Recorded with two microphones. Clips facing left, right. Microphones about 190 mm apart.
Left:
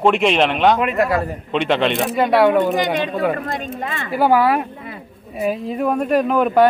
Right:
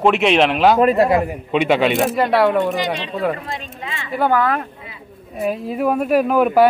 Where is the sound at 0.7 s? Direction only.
35° right (ahead or behind).